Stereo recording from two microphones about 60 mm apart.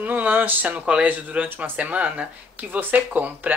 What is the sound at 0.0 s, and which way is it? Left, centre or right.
Speech, right.